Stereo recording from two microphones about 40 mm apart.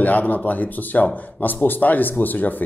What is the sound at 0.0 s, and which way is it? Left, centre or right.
Speech, left.